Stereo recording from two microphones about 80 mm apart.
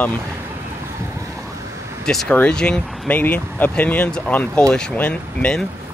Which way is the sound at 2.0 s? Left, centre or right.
Centre.